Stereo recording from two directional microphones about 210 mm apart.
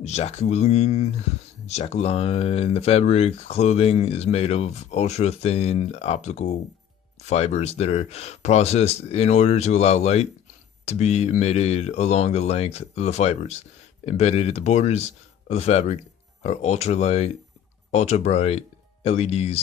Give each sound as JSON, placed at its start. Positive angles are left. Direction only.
{"t": 0.0, "sound": "speech", "side_deg": 30}